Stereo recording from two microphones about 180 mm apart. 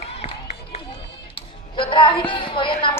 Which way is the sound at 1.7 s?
25° left (ahead or behind).